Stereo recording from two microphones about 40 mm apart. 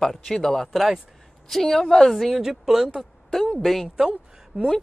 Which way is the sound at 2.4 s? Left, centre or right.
Centre.